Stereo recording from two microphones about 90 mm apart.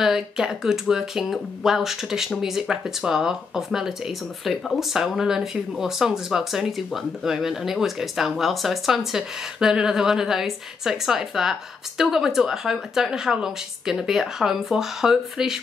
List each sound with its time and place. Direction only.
0.0 s speech: 5° right (ahead or behind)